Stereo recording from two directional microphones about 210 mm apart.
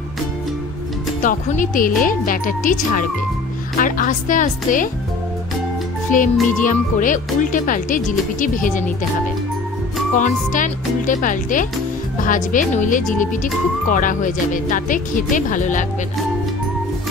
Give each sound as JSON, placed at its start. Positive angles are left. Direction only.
{"t": 1.2, "sound": "speech", "side_deg": 40}
{"t": 6.0, "sound": "speech", "side_deg": 40}
{"t": 10.1, "sound": "speech", "side_deg": 40}